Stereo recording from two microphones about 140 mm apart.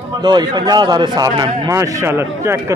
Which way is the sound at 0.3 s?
30° right (ahead or behind).